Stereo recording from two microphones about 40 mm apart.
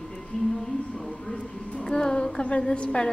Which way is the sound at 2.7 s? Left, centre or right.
Left.